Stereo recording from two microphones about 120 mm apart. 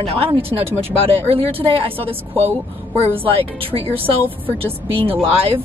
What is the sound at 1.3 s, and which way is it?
A woman's voice, 55° right (ahead or behind).